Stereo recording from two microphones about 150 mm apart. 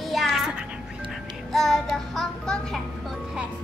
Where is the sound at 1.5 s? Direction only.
Centre (ahead or behind).